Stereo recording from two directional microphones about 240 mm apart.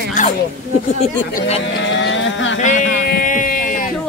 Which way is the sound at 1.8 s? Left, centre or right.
Left.